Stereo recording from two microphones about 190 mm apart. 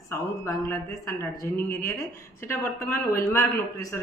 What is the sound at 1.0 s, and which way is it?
A man's voice, 15° left (ahead or behind).